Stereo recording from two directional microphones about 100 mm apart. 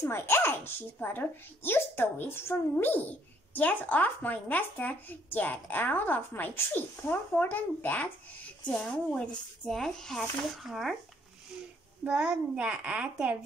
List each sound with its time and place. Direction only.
0.0 s speech: 25° left (ahead or behind); by 11.0 s centre (ahead or behind)
12.0 s a child's voice: 10° right (ahead or behind)